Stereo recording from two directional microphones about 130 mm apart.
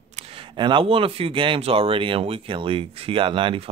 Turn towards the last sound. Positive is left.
turn(degrees=-45)  # may be behind; listen again after turning